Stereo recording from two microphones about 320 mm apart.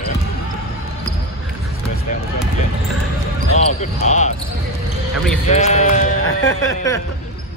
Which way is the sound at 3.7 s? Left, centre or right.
Left.